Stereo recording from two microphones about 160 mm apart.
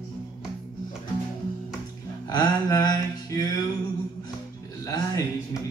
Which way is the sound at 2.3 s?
25° left (ahead or behind).